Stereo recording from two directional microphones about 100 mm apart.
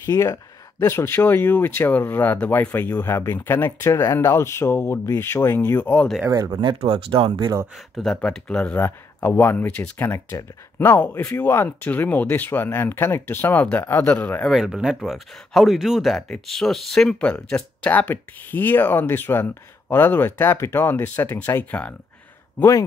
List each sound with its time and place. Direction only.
0.0 s speech: 30° left (ahead or behind)
6.3 s speech: 35° right (ahead or behind)
6.6 s speech: 60° right (ahead or behind)
8.0 s speech: 5° left (ahead or behind)
14.5 s speech: 5° right (ahead or behind); by 21.9 s 15° left (ahead or behind)